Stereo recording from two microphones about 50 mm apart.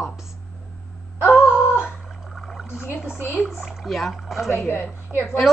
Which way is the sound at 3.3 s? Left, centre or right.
Centre.